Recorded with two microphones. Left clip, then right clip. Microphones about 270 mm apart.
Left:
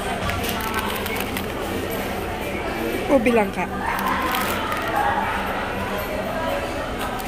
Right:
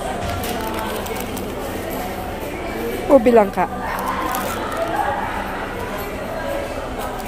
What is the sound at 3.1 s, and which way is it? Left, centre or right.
Speech, centre.